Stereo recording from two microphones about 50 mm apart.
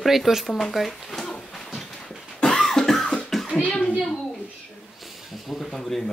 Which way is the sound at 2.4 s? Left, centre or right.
Centre.